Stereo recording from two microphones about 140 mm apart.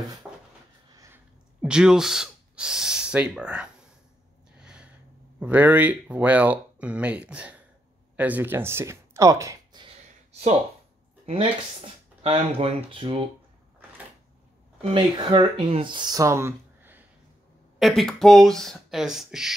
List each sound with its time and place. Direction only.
0.2 s cupboard open or close: 10° right (ahead or behind)
1.6 s speech: 5° right (ahead or behind)
4.6 s a sound: 5° right (ahead or behind)
5.4 s speech: 10° right (ahead or behind); by 9.9 s 30° right (ahead or behind)
12.2 s speech: 45° right (ahead or behind)
14.8 s speech: 40° right (ahead or behind); by 17.0 s 15° right (ahead or behind)
17.7 s speech: centre (ahead or behind)